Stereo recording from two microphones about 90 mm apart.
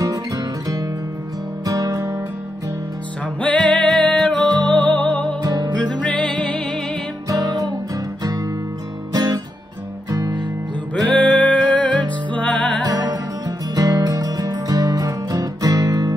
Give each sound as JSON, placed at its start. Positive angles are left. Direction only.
{"t": 0.0, "sound": "music", "side_deg": -40}
{"t": 3.3, "sound": "music", "side_deg": 15}
{"t": 4.6, "sound": "music", "side_deg": -60}
{"t": 4.8, "sound": "music", "side_deg": 15}
{"t": 5.4, "sound": "music", "side_deg": -45}
{"t": 5.8, "sound": "music", "side_deg": 10}
{"t": 7.2, "sound": "music", "side_deg": -45}
{"t": 11.1, "sound": "music", "side_deg": 15}
{"t": 12.8, "sound": "music", "side_deg": -45}